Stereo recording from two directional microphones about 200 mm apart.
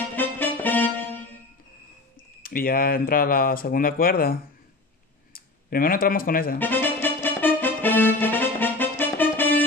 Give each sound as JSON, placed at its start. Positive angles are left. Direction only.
{"t": 0.1, "sound": "music", "side_deg": 10}
{"t": 2.4, "sound": "speech", "side_deg": 45}
{"t": 6.6, "sound": "music", "side_deg": 10}